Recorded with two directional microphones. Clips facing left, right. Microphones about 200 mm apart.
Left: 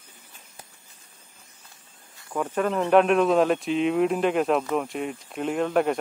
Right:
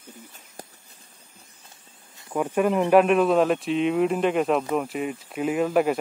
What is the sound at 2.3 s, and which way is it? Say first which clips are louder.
Speech: right 3 dB; 10° right (ahead or behind).